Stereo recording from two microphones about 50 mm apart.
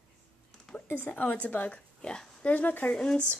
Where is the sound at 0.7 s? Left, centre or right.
Left.